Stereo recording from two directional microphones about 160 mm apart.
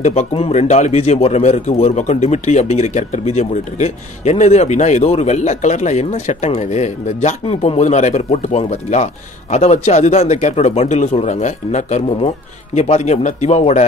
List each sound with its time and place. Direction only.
0.0 s speech: 45° left (ahead or behind)